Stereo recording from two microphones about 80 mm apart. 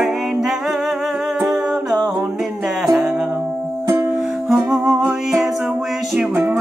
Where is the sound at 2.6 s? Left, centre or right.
Centre.